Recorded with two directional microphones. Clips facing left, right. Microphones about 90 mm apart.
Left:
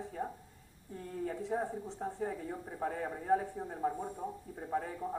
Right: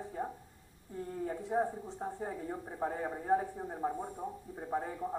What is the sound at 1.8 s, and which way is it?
Speech, 15° right (ahead or behind).